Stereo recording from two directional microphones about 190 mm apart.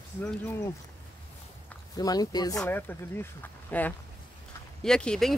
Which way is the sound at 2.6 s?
10° left (ahead or behind).